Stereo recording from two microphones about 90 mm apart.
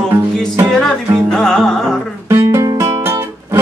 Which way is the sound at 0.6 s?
10° left (ahead or behind).